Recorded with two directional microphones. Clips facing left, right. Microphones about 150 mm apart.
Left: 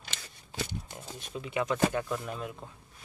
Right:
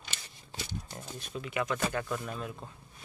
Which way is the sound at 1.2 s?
20° left (ahead or behind).